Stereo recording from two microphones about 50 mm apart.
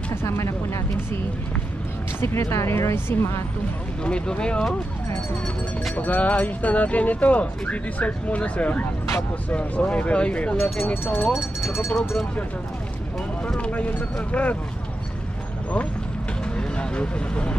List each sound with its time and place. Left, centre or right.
0.1 s speech: left
2.1 s speech: left
4.0 s speech: centre
5.9 s speech: left
11.6 s speech: left
13.6 s speech: left
16.5 s vehicle: left